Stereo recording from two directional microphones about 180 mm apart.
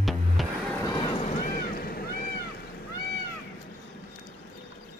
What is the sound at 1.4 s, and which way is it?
Boat, 50° left (ahead or behind).